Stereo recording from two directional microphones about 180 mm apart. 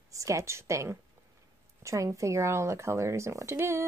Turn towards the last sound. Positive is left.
turn(degrees=-15)  # may be behind; listen again after turning